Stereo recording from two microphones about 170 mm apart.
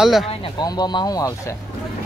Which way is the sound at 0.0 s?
Centre (ahead or behind).